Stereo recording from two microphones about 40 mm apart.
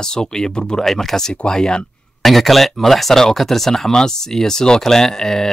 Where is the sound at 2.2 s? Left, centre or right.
Centre.